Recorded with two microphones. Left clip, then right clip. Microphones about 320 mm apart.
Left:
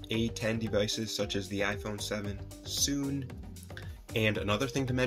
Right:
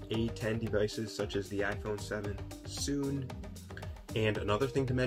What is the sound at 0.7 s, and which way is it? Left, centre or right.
Speech, centre.